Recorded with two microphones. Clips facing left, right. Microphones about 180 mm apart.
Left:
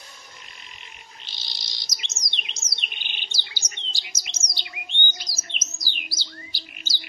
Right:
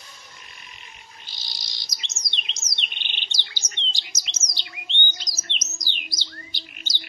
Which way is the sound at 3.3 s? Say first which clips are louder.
Right 1 dB; 10° left (ahead or behind).